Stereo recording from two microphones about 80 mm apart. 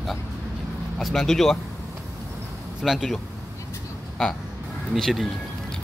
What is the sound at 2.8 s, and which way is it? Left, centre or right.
Speech, centre.